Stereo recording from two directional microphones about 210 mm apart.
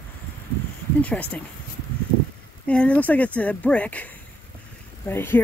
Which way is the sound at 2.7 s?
5° left (ahead or behind).